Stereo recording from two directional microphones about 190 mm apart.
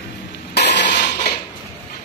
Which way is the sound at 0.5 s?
60° left (ahead or behind).